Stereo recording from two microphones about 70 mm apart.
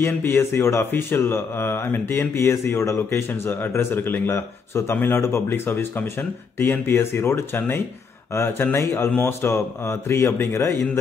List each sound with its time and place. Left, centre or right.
0.0 s speech: left